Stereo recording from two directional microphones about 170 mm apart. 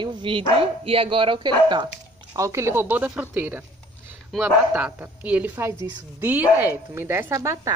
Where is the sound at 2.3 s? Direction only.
15° right (ahead or behind).